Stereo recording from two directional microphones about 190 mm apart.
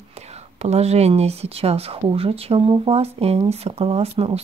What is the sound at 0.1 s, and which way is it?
Speech, 35° right (ahead or behind).